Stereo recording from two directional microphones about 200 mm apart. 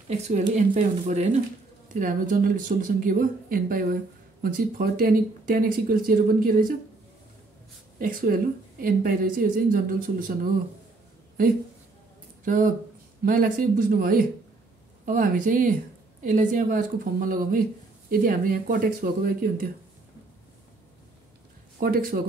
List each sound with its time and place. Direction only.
0.1 s speech: 40° right (ahead or behind)
8.0 s speech: 45° right (ahead or behind)
12.4 s speech: 40° right (ahead or behind)
21.7 s speech: 45° right (ahead or behind)